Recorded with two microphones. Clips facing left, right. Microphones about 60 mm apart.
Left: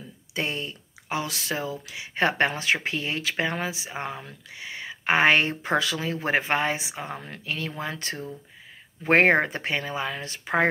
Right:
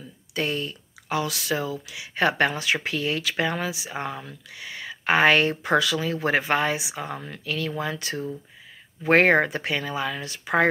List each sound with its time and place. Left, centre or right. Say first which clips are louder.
0.3 s speech: right 3 dB; left